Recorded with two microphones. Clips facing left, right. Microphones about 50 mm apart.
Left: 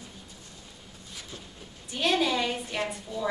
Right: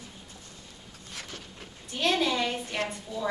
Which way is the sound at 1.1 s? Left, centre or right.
Right.